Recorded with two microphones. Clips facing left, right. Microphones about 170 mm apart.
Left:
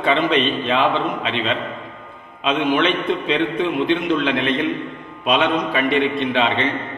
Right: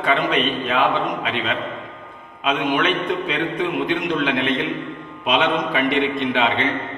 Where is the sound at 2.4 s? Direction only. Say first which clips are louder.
Left 2 dB; 10° right (ahead or behind).